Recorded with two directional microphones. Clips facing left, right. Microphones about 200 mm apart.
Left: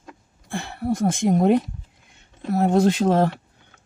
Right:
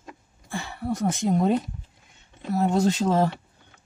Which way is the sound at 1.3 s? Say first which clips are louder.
Left 5 dB; 65° left (ahead or behind).